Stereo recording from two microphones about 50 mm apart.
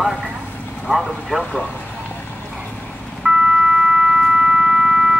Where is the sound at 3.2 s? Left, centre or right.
Centre.